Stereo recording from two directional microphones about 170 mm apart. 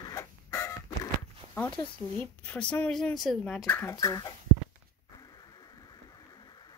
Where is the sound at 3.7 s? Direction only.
20° left (ahead or behind).